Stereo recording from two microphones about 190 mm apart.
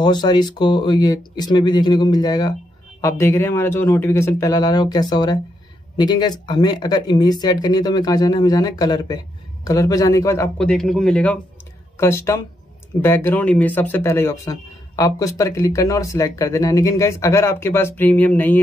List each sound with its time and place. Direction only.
0.0 s speech: 20° left (ahead or behind)
10.6 s speech: 5° left (ahead or behind)